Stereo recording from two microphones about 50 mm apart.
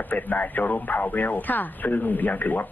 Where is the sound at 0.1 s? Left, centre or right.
Left.